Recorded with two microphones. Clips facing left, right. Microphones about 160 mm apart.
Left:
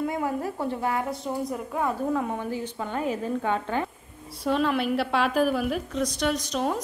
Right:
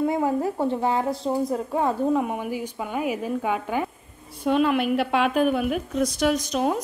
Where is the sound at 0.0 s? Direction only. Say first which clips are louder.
Right 5 dB; 25° right (ahead or behind).